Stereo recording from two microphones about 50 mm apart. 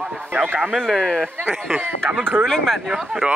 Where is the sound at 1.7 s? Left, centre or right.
Right.